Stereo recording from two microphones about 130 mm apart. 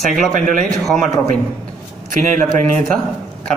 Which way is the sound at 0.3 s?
85° right.